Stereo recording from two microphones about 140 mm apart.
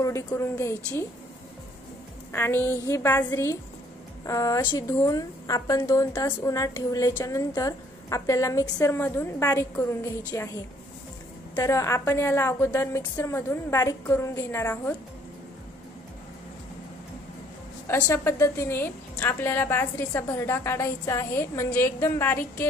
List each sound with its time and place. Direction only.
0.0 s a woman's voice: 20° left (ahead or behind)
2.3 s a woman's voice: 15° left (ahead or behind)
11.5 s a woman's voice: 25° left (ahead or behind)
17.8 s a woman's voice: 20° left (ahead or behind)